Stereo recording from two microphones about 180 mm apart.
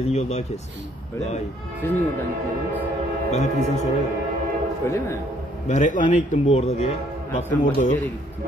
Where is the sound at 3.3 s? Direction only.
40° left (ahead or behind).